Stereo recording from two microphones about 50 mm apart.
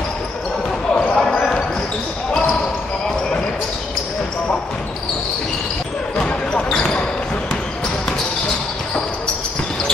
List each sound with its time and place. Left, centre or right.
1.1 s basketball bounce: centre
6.1 s basketball bounce: centre